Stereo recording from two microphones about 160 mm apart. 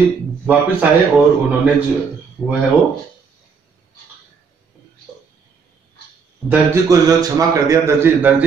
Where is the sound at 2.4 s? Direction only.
Centre (ahead or behind).